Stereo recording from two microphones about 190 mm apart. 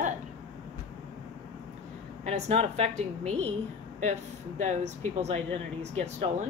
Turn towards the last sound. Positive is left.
turn(degrees=-35)  # may be behind; listen again after turning